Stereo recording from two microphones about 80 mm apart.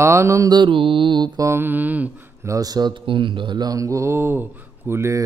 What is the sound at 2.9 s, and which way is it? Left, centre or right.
Mantra, right.